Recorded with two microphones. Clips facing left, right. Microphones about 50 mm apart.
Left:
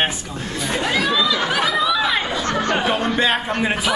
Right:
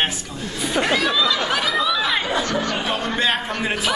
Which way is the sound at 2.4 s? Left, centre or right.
Left.